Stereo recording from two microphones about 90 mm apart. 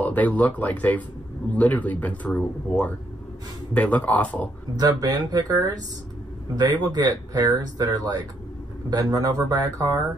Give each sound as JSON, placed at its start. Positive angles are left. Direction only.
{"t": 0.0, "sound": "speech", "side_deg": 20}
{"t": 4.7, "sound": "speech", "side_deg": -45}